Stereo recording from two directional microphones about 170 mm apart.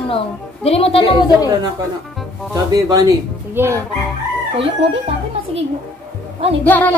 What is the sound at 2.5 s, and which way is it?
Speech, 20° right (ahead or behind).